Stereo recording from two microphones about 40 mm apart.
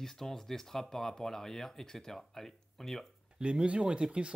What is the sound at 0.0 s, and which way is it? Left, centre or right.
Speech, centre.